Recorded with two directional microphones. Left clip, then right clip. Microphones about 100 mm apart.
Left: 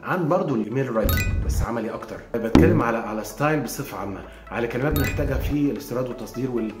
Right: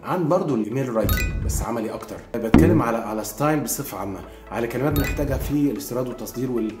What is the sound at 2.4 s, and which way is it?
Speech, 20° right (ahead or behind).